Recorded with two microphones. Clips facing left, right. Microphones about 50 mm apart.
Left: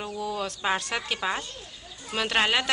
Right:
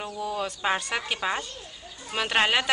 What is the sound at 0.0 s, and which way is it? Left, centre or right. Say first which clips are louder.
A woman's voice: even; centre.